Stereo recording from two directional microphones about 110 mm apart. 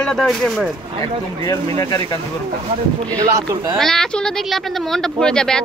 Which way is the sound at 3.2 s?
35° right (ahead or behind).